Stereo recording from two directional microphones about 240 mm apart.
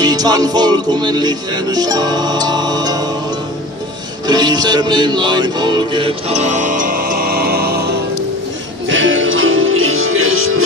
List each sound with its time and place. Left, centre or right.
0.0 s music: centre
4.3 s music: centre; by 7.9 s right
8.8 s music: right